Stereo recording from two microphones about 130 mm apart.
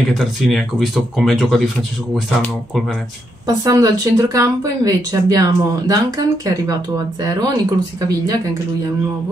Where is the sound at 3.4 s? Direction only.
30° right (ahead or behind).